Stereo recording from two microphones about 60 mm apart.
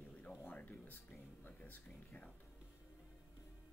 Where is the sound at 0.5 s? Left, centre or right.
Left.